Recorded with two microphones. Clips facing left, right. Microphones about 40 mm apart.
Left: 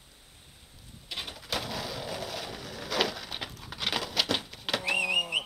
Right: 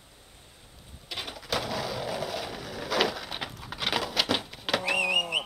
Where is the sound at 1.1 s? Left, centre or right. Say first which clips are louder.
Right 3 dB; centre.